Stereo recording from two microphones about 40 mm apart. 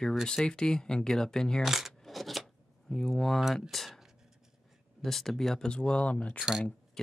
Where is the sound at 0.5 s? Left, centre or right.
Centre.